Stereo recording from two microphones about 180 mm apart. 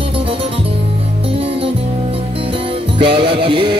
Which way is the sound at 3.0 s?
30° right (ahead or behind).